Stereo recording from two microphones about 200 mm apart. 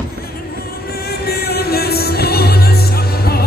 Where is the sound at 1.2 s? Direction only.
50° left (ahead or behind).